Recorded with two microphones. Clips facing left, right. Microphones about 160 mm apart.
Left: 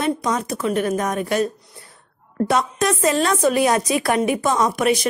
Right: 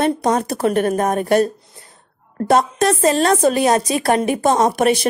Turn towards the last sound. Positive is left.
turn(degrees=-35)  # may be behind; listen again after turning